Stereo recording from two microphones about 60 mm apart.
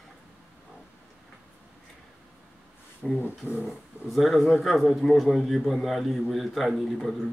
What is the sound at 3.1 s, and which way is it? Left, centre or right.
Speech, left.